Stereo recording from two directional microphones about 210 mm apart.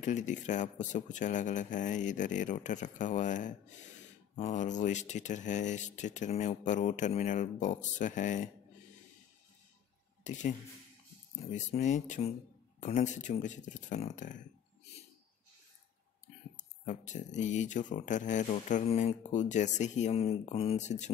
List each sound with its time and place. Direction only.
0.0 s speech: 35° left (ahead or behind)
10.2 s speech: 35° left (ahead or behind)
11.5 s speech: 35° left (ahead or behind)
16.5 s speech: 35° left (ahead or behind)